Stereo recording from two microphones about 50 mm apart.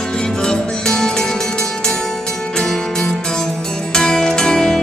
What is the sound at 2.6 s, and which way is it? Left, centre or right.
Music, centre.